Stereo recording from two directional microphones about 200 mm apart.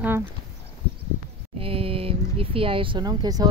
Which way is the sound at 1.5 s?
30° right (ahead or behind).